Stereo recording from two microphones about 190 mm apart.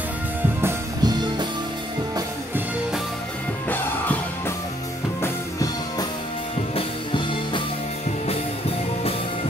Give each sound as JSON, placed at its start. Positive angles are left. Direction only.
{"t": 0.6, "sound": "music", "side_deg": -15}
{"t": 3.6, "sound": "music", "side_deg": 10}